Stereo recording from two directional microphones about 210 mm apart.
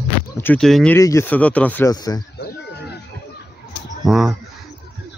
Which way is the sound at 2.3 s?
50° left (ahead or behind).